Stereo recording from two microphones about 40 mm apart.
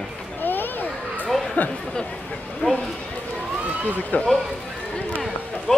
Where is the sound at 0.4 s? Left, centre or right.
Left.